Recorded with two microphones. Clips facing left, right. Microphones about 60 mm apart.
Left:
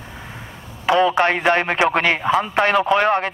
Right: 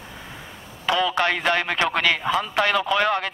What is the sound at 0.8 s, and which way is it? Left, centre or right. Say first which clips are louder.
A man's voice: left 5 dB; left.